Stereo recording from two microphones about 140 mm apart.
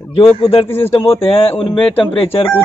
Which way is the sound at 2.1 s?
45° left (ahead or behind).